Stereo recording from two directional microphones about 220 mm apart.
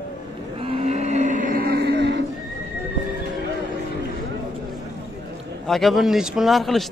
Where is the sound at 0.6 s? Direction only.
25° right (ahead or behind); by 2.2 s 50° right (ahead or behind).